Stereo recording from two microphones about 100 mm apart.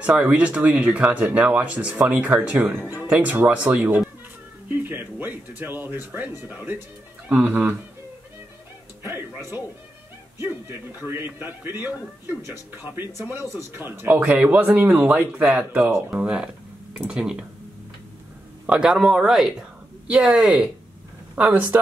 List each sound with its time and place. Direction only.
0.0 s speech: 15° right (ahead or behind)
9.0 s music: 25° right (ahead or behind)
10.4 s a man's voice: 20° right (ahead or behind)
18.7 s speech: 5° right (ahead or behind)